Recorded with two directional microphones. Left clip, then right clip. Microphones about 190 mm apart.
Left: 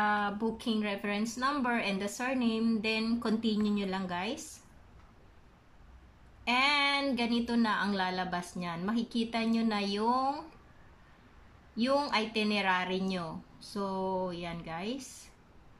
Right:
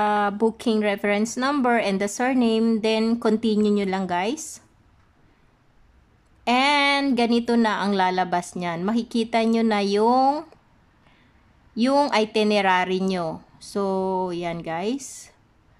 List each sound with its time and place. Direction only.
0.0 s speech: 35° right (ahead or behind)
6.4 s speech: 35° right (ahead or behind)
11.7 s speech: 35° right (ahead or behind)